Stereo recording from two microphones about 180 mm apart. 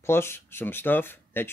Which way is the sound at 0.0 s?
15° left (ahead or behind).